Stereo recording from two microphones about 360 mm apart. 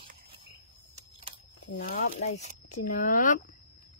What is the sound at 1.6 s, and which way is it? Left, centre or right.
Speech, left.